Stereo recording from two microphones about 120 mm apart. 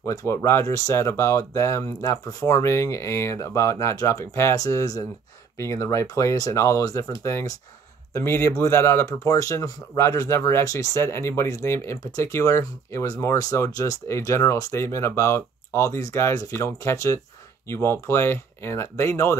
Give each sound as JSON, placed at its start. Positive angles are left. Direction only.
{"t": 0.0, "sound": "speech", "side_deg": 25}